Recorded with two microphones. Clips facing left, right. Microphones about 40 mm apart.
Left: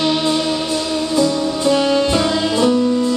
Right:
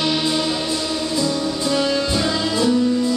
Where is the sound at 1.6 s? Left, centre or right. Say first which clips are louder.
Left 6 dB; left.